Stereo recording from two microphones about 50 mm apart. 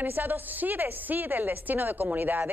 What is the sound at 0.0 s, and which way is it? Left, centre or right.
A woman's voice, right.